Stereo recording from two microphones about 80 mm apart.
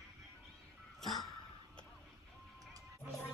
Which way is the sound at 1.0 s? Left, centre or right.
Centre.